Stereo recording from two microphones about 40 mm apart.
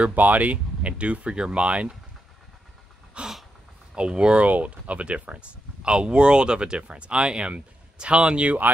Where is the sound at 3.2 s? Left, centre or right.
Right.